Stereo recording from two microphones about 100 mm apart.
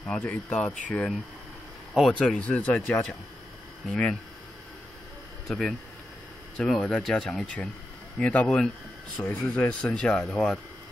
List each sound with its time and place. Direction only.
0.0 s speech: 15° left (ahead or behind)
5.5 s speech: 5° left (ahead or behind)